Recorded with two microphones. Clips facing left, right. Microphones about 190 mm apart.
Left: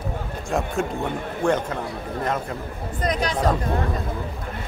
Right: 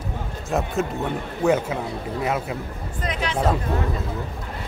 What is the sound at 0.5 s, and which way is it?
A man's voice, centre (ahead or behind).